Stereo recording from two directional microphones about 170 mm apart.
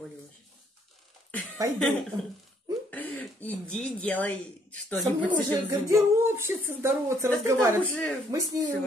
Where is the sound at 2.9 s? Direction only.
10° left (ahead or behind).